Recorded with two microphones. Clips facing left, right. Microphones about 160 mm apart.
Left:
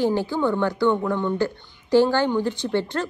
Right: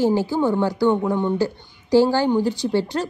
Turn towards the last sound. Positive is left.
turn(degrees=-15)  # may be behind; listen again after turning